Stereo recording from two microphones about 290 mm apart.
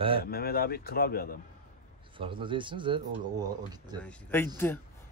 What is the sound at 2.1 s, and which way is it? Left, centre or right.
Speech, centre.